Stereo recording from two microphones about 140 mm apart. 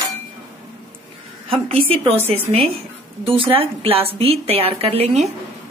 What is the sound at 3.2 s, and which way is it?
A woman's voice, 40° right (ahead or behind).